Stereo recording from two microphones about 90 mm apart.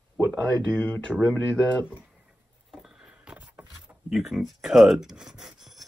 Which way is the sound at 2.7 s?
5° right (ahead or behind).